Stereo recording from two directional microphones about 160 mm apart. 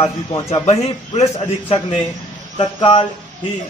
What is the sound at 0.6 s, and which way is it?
Speech, 40° left (ahead or behind).